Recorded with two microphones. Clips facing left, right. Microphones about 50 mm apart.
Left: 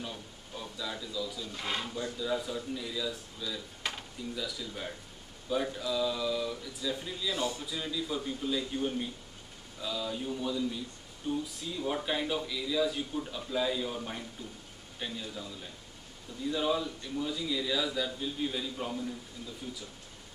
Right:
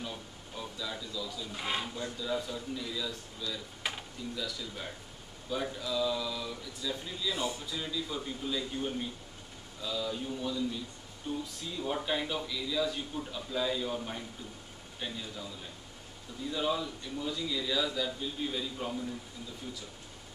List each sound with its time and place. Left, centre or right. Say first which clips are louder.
0.0 s a sound: even; centre
1.5 s speech: right 4 dB; centre
2.1 s a man's voice: left 2 dB; centre
3.8 s a sound: even; centre
4.4 s a man's voice: left 1 dB; centre
7.3 s a man's voice: left 3 dB; right
7.6 s a man's voice: left 1 dB; centre
16.4 s a man's voice: left 2 dB; centre